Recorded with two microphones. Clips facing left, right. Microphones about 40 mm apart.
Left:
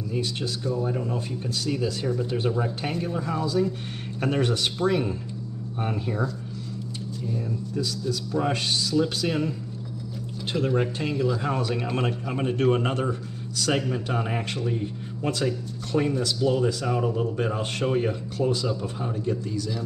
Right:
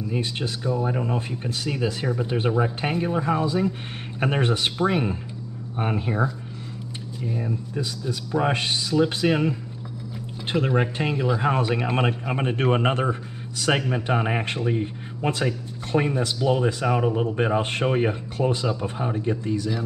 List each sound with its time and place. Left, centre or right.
0.1 s speech: right